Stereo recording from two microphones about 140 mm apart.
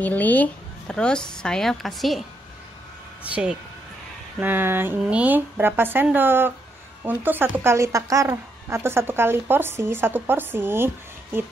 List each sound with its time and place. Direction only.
0.0 s speech: 10° left (ahead or behind)
3.3 s a woman's voice: 10° right (ahead or behind)